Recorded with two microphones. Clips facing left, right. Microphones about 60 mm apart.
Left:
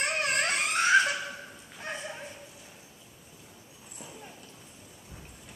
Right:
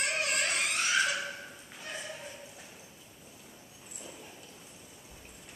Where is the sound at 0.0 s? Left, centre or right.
Left.